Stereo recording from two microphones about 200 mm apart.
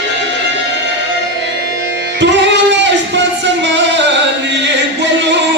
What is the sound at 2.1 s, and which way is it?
Music, 60° right (ahead or behind).